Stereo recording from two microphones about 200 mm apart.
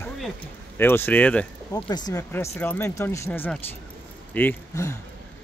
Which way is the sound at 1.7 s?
20° left (ahead or behind).